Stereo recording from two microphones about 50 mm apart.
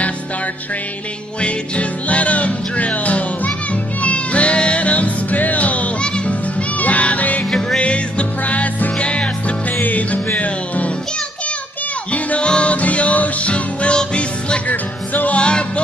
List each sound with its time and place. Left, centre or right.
1.4 s music: left
9.7 s music: left
12.1 s music: left
14.7 s music: left